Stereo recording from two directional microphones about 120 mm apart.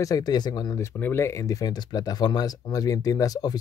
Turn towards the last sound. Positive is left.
turn(degrees=35)  # may be behind; listen again after turning